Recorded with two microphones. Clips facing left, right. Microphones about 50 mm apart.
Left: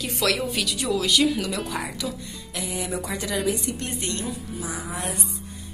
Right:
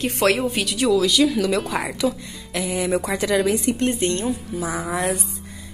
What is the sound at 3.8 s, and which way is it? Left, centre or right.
Speech, right.